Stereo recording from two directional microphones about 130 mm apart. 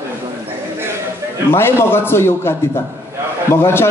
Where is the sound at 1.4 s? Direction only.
20° left (ahead or behind).